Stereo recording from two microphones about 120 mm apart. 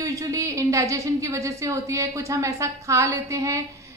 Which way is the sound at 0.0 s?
25° right (ahead or behind).